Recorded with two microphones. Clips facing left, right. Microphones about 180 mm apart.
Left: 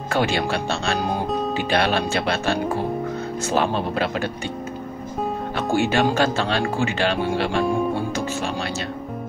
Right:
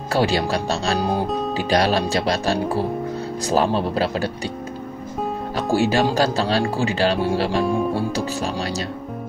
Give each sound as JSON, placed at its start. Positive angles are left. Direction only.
{"t": 0.1, "sound": "speech", "side_deg": -35}
{"t": 1.0, "sound": "music", "side_deg": 0}
{"t": 1.7, "sound": "speech", "side_deg": -35}
{"t": 5.7, "sound": "speech", "side_deg": -35}